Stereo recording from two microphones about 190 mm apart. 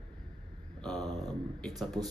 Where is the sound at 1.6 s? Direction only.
Centre (ahead or behind).